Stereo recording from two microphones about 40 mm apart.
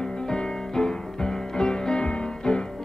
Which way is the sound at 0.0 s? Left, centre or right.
Centre.